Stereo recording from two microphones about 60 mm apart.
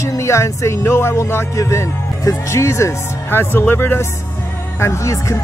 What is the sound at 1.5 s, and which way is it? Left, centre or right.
Speech, left.